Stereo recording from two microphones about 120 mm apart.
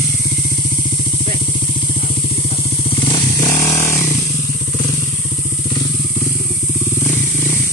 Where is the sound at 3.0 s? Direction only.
40° left (ahead or behind).